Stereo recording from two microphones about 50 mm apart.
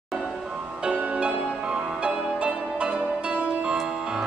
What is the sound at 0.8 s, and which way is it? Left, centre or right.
Music, right.